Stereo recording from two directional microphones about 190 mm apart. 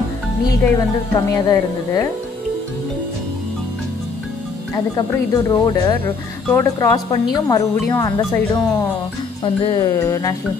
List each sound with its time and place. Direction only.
0.5 s a woman's voice: 20° left (ahead or behind)
4.7 s a woman's voice: 20° left (ahead or behind)